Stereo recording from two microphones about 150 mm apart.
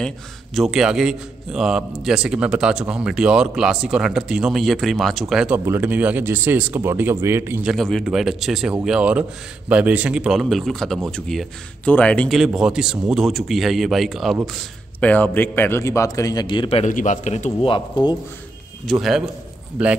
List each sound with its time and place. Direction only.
0.6 s a man's voice: 5° right (ahead or behind)
7.6 s a man's voice: centre (ahead or behind)
12.4 s a man's voice: 5° right (ahead or behind); by 16.8 s 35° left (ahead or behind)
16.8 s a man's voice: 55° left (ahead or behind)
17.6 s speech: 35° left (ahead or behind)
18.9 s a man's voice: centre (ahead or behind)